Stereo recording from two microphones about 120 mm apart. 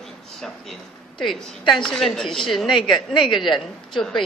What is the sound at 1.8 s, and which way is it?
A woman's voice, 5° left (ahead or behind).